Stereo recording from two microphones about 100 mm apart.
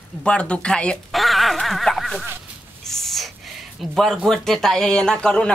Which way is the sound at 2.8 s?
5° left (ahead or behind).